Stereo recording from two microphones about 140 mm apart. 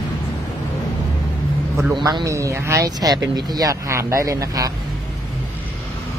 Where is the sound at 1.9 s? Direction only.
30° right (ahead or behind).